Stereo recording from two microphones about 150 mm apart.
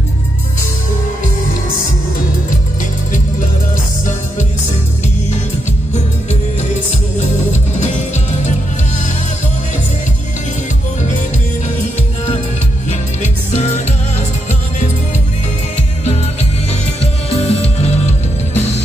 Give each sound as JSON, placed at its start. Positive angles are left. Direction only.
{"t": 7.8, "sound": "music", "side_deg": 50}
{"t": 13.2, "sound": "music", "side_deg": 50}
{"t": 16.0, "sound": "music", "side_deg": 45}